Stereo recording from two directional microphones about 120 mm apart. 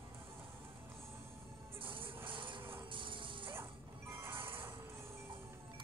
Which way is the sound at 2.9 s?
45° right (ahead or behind).